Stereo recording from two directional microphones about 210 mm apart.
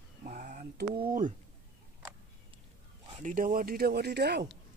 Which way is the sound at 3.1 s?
35° right (ahead or behind).